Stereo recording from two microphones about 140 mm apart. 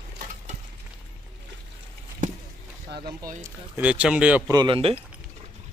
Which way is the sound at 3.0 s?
30° right (ahead or behind).